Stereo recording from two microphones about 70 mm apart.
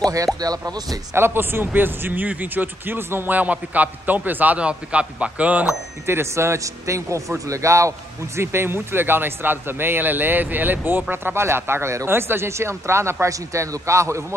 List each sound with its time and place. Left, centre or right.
0.0 s a man's voice: right
0.4 s speech: right
1.1 s speech: right
6.0 s a man's voice: right